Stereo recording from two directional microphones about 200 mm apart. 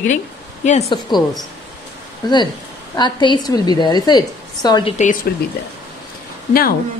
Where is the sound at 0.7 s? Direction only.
35° left (ahead or behind).